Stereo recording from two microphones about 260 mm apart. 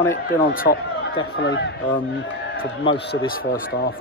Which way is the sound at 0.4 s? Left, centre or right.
Left.